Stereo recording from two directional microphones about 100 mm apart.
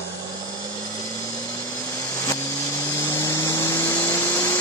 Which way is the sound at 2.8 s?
25° left (ahead or behind).